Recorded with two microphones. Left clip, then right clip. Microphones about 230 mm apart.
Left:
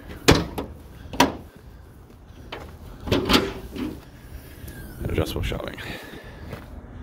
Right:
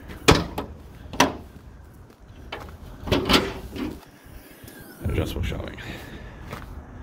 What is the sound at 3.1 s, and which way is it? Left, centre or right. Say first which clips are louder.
Drawer open or close: even; centre.